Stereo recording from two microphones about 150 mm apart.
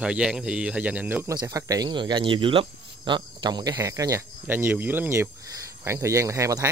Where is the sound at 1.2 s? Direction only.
20° right (ahead or behind).